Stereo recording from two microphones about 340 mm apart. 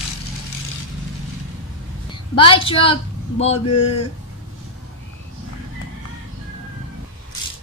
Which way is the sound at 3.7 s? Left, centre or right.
Left.